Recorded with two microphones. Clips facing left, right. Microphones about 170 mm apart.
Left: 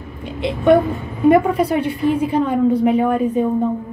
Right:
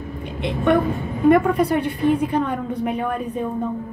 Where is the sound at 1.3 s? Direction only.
5° left (ahead or behind).